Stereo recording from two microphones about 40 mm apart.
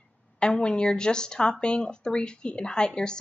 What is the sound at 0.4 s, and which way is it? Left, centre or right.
Speech, left.